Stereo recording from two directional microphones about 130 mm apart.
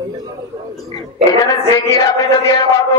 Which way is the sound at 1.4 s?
25° left (ahead or behind).